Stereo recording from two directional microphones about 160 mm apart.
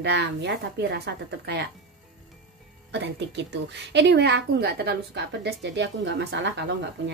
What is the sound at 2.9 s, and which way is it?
A woman's voice, 90° right.